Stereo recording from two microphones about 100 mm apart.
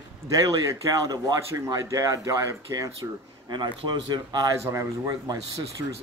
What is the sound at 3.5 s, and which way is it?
Speech, 50° right (ahead or behind).